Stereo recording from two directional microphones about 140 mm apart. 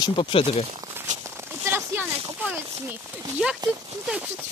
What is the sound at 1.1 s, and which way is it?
Sheep, 60° right (ahead or behind).